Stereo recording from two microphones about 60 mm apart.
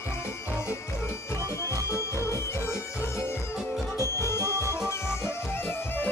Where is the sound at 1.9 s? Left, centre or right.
Left.